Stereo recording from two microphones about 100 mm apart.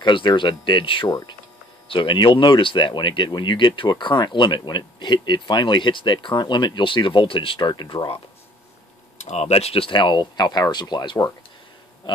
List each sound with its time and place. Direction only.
0.0 s speech: 50° left (ahead or behind)
9.3 s speech: 85° left; by 11.1 s 45° left (ahead or behind)